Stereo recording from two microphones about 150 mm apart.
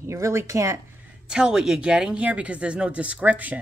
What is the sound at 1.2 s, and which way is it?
Speech, 5° right (ahead or behind).